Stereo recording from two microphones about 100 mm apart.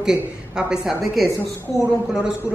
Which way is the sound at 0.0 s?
5° right (ahead or behind).